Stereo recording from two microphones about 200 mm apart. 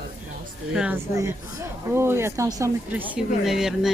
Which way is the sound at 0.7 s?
10° right (ahead or behind).